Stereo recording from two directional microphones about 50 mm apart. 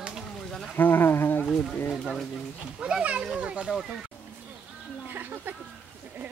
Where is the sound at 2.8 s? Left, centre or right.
Centre.